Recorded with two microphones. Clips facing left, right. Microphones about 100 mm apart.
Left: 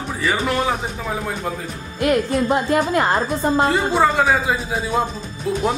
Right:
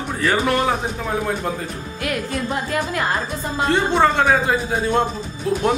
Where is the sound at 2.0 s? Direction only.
25° left (ahead or behind).